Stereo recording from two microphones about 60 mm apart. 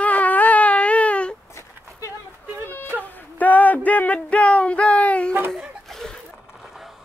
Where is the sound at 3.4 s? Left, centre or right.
Left.